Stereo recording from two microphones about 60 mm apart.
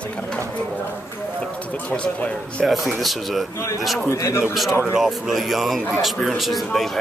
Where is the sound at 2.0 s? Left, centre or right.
Left.